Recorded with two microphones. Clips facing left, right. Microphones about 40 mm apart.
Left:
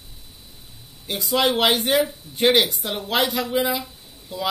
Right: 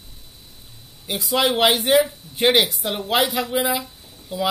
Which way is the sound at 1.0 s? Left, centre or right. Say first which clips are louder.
Even; centre.